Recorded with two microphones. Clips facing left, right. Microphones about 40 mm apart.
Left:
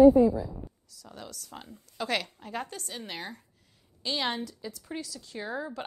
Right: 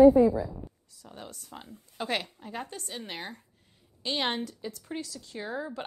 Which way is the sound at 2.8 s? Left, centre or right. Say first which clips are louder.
Even; right.